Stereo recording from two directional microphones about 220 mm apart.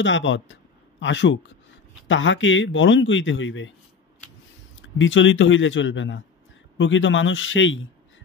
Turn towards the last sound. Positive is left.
turn(degrees=60)  # may be behind; listen again after turning